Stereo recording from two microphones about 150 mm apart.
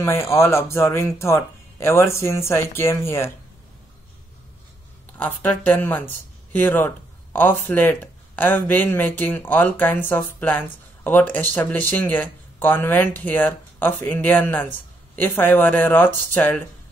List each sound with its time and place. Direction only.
0.0 s speech: 15° left (ahead or behind)
5.1 s speech: 10° left (ahead or behind)